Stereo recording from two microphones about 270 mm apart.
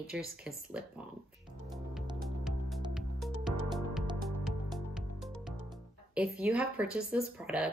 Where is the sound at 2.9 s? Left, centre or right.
Centre.